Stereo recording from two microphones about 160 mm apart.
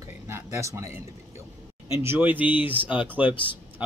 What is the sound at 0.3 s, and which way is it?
Speech, 20° right (ahead or behind).